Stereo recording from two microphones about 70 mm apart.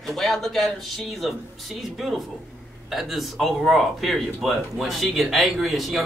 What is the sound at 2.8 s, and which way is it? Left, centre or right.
Speech, centre.